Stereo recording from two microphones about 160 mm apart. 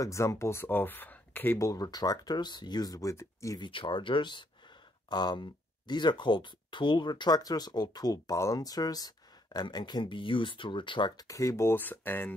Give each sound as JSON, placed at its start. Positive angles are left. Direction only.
{"t": 0.0, "sound": "speech", "side_deg": 20}